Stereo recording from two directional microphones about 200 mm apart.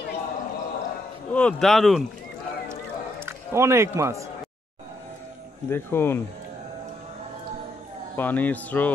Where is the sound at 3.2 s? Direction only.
15° right (ahead or behind).